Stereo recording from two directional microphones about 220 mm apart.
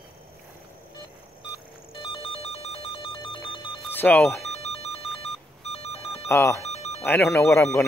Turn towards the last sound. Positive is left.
turn(degrees=10)  # may be behind; listen again after turning